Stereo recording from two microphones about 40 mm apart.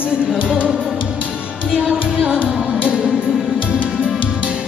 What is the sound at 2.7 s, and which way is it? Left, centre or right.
Music, right.